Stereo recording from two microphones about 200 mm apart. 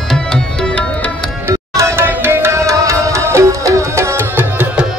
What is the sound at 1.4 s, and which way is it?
Music, 15° right (ahead or behind).